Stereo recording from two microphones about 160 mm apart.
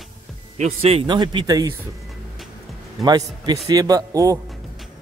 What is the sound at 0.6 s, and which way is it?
Speech, 35° right (ahead or behind).